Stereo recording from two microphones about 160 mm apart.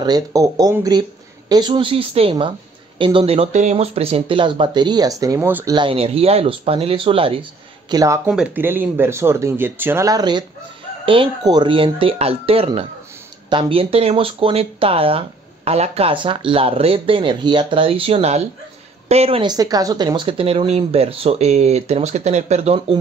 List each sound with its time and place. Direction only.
0.0 s speech: 25° right (ahead or behind)
5.7 s speech: 30° right (ahead or behind)
7.9 s speech: 20° right (ahead or behind)
8.3 s speech: 5° right (ahead or behind); by 19.4 s 40° right (ahead or behind)
19.4 s speech: 25° right (ahead or behind); by 22.9 s 40° right (ahead or behind)